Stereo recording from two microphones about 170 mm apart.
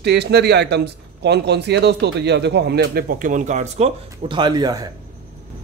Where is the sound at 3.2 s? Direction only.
50° right (ahead or behind).